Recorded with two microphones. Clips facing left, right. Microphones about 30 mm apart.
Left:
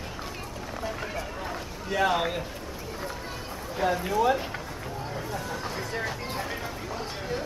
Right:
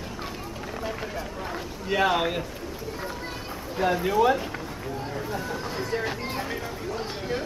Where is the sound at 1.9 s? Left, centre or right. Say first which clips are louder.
Right 2 dB; centre.